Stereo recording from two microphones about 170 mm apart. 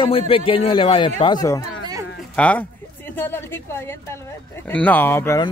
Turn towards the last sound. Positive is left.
turn(degrees=15)  # may be behind; listen again after turning